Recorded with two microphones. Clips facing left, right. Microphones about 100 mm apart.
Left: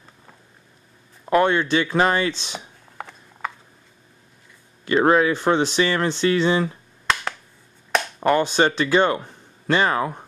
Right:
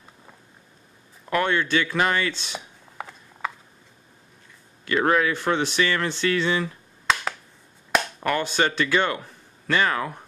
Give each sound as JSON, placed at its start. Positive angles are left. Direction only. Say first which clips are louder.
{"t": 1.2, "sound": "speech", "louder": "left 5 dB", "side_deg": 25}
{"t": 3.0, "sound": "gears", "louder": "even", "side_deg": -5}
{"t": 4.8, "sound": "speech", "louder": "left 4 dB", "side_deg": 25}
{"t": 8.2, "sound": "speech", "louder": "left 9 dB", "side_deg": 25}